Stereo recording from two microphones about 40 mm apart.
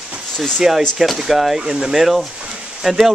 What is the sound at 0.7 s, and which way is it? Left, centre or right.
Speech, centre.